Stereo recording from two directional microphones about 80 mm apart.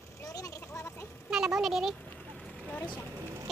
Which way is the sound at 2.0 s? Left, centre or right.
Left.